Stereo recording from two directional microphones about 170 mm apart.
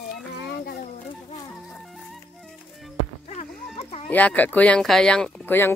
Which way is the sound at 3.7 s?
40° left (ahead or behind).